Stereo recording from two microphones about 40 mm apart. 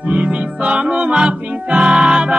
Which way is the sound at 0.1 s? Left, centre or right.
Right.